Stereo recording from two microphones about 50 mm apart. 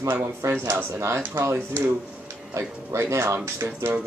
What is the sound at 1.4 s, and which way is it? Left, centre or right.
Speech, right.